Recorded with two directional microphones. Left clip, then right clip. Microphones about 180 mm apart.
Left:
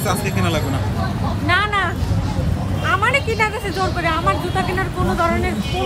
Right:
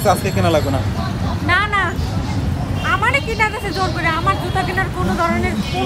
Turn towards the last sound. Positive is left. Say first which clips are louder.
# even
turn(degrees=25)  # may be behind; listen again after turning